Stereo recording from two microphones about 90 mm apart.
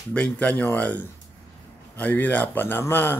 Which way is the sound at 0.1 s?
15° left (ahead or behind).